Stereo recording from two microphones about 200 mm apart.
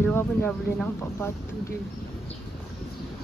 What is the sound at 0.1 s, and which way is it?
Speech, 10° left (ahead or behind).